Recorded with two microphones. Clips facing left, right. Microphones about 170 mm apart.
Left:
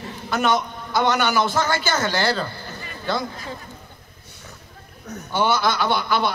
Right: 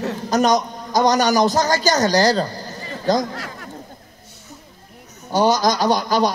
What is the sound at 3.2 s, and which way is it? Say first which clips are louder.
Speech: right 5 dB; 85° right.